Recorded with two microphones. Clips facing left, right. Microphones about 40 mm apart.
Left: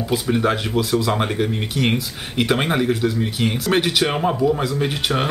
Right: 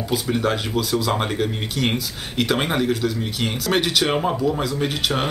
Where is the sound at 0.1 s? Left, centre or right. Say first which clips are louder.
Left 2 dB; centre.